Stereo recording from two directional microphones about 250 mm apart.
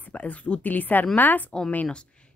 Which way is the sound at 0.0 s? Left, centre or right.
Centre.